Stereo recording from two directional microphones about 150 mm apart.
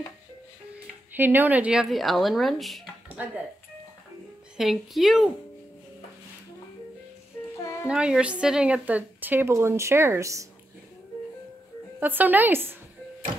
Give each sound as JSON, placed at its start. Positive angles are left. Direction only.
{"t": 1.1, "sound": "speech", "side_deg": -15}
{"t": 3.2, "sound": "a woman's voice", "side_deg": -10}
{"t": 4.6, "sound": "speech", "side_deg": 0}
{"t": 7.6, "sound": "a sound", "side_deg": 15}
{"t": 7.9, "sound": "a woman's voice", "side_deg": -5}
{"t": 12.0, "sound": "a woman's voice", "side_deg": -10}